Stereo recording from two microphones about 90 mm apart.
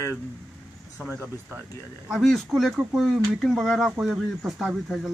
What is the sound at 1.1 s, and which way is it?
Speech, 25° right (ahead or behind).